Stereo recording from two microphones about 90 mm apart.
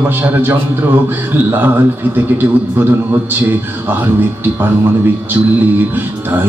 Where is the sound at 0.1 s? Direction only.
20° right (ahead or behind).